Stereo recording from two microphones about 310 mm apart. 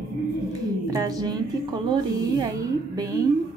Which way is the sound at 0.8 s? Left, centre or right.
Centre.